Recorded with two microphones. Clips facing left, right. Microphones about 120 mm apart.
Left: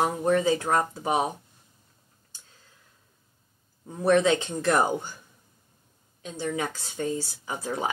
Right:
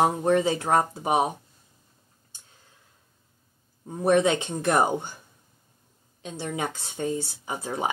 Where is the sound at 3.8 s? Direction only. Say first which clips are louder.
Even; 25° right (ahead or behind).